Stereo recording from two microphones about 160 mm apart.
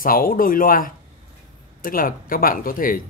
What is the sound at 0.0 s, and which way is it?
Speech, 65° left (ahead or behind).